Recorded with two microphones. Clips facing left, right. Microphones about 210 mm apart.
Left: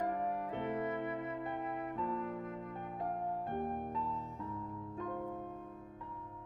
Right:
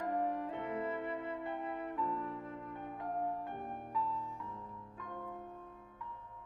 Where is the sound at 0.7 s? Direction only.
30° right (ahead or behind).